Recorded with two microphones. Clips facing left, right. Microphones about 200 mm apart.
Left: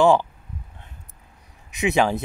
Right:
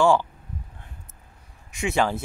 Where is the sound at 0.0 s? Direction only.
20° left (ahead or behind).